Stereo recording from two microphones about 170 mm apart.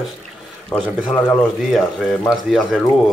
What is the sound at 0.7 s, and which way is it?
Speech, 10° left (ahead or behind).